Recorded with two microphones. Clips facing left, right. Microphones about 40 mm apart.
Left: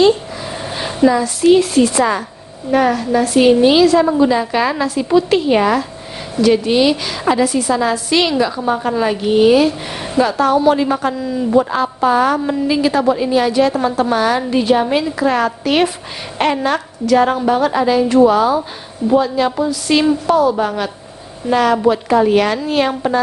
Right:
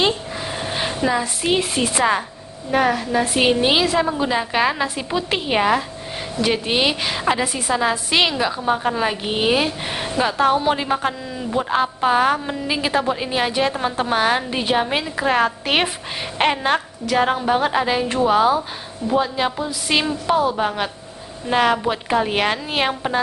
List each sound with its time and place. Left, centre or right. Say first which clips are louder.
0.7 s speech: left 8 dB; centre
2.7 s a woman's voice: left 4 dB; centre
11.7 s a woman's voice: left 3 dB; right
17.6 s a woman's voice: left 5 dB; right